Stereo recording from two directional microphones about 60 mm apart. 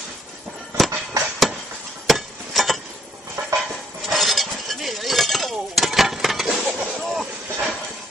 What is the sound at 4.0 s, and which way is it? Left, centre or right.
Cutlery, centre.